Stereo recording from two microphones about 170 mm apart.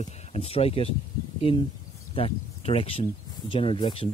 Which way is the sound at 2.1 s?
35° left (ahead or behind).